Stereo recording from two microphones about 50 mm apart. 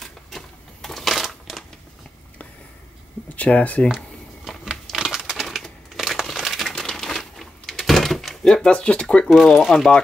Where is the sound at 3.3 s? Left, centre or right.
Left.